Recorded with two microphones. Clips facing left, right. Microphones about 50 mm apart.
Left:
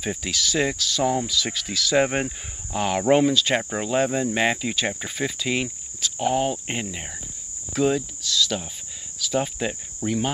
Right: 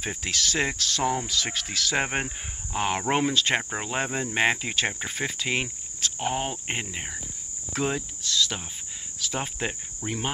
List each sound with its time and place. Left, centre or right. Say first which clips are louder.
0.0 s speech: left 2 dB; right
3.8 s speech: left 7 dB; right
6.8 s cricket: left 2 dB; right
9.2 s speech: left 5 dB; right
10.0 s cricket: left 6 dB; right